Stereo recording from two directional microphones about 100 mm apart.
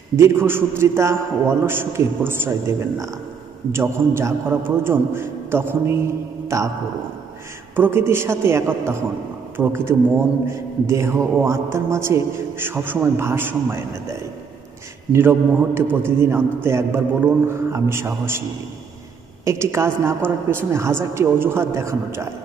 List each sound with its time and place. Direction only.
0.1 s a man's voice: 25° right (ahead or behind)
3.7 s a man's voice: 25° right (ahead or behind)
7.7 s a man's voice: 20° right (ahead or behind)
15.1 s a man's voice: 25° right (ahead or behind)
19.4 s a man's voice: 25° right (ahead or behind)